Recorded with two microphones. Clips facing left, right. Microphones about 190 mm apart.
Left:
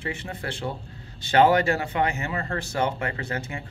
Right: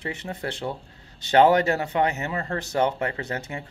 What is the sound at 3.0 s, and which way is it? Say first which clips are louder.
Speech: right 1 dB; 35° right (ahead or behind).